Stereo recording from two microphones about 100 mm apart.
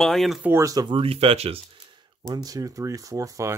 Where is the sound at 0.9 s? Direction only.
70° right (ahead or behind).